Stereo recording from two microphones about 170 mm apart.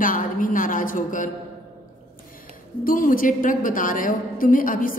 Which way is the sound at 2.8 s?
55° left (ahead or behind).